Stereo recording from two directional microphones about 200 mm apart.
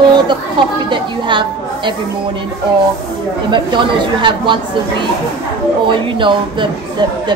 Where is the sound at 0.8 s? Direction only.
25° right (ahead or behind).